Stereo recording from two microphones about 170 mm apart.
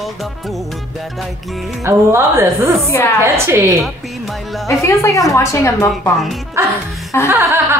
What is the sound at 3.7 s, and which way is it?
Music, centre (ahead or behind).